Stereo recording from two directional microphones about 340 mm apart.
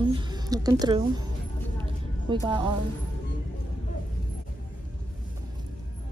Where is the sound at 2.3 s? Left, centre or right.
Centre.